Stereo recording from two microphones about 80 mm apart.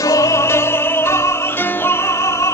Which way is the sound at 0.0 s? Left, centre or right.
Left.